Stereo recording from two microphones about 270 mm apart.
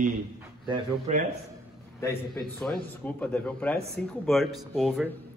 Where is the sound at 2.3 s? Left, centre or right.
Centre.